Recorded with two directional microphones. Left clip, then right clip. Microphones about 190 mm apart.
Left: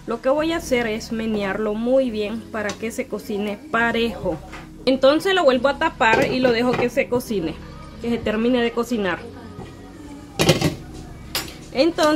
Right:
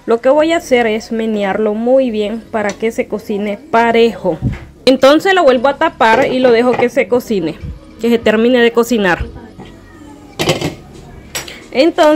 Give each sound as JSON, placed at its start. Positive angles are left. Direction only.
{"t": 0.1, "sound": "speech", "side_deg": -30}
{"t": 1.7, "sound": "speech", "side_deg": -15}
{"t": 4.8, "sound": "speech", "side_deg": -40}
{"t": 11.7, "sound": "speech", "side_deg": -30}